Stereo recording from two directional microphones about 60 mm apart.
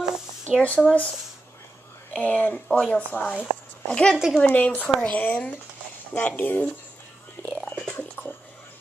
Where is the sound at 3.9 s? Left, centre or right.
Centre.